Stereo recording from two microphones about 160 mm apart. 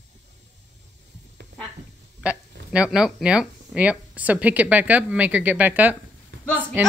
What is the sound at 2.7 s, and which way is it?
Speech, 5° right (ahead or behind).